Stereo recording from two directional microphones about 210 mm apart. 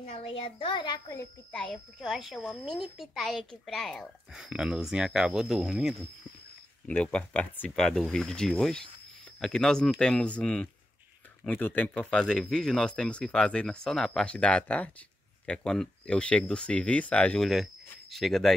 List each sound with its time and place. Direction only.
0.0 s a child's voice: 30° left (ahead or behind)
1.5 s a child's voice: 5° left (ahead or behind)